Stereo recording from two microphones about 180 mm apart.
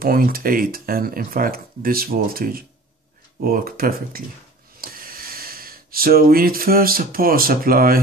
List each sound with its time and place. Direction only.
0.0 s speech: 55° right (ahead or behind)